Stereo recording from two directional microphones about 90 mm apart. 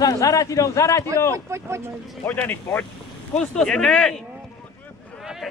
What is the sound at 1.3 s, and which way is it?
Speech, 30° right (ahead or behind).